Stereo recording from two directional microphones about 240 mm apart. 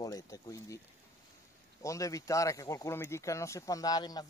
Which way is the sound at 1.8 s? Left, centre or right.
Centre.